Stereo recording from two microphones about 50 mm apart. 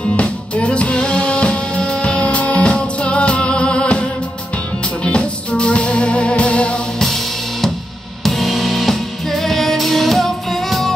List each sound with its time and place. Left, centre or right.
0.0 s music: left
5.0 s music: left
8.2 s music: centre